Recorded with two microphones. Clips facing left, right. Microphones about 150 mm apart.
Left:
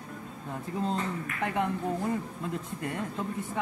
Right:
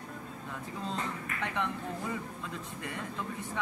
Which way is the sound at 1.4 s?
45° left (ahead or behind).